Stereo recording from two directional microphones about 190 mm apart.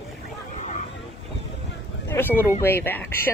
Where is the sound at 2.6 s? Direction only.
10° left (ahead or behind).